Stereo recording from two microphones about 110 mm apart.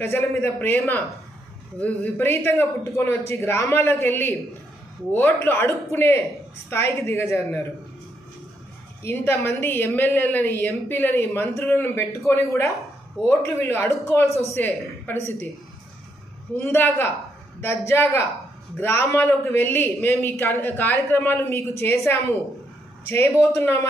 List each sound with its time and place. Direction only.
0.0 s a man's voice: 25° left (ahead or behind)
9.0 s a man's voice: 20° left (ahead or behind)
16.5 s a man's voice: 20° left (ahead or behind)